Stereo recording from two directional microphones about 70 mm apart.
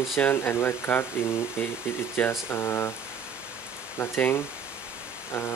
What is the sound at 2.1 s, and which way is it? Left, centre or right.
Speech, left.